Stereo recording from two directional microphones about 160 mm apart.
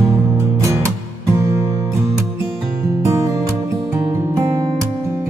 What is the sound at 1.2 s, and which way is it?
Music, 20° right (ahead or behind).